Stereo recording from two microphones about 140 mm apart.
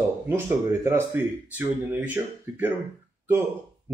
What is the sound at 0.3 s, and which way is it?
A man's voice, 15° right (ahead or behind).